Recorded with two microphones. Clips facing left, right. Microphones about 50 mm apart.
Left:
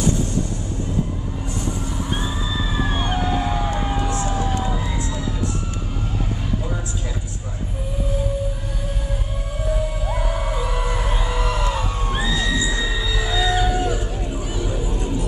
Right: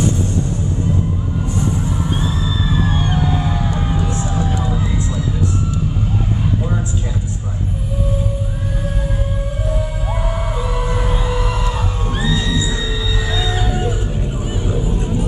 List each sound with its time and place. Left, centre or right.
2.2 s music: centre
3.9 s a sound: left
4.9 s music: left
10.2 s music: centre
12.1 s music: centre
14.7 s music: right